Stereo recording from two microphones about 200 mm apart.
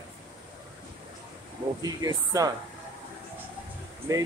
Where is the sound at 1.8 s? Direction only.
20° right (ahead or behind).